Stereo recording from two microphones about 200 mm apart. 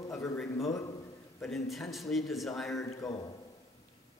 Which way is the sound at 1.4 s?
Centre (ahead or behind).